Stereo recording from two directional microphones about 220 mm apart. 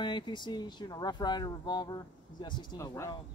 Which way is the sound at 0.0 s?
20° left (ahead or behind).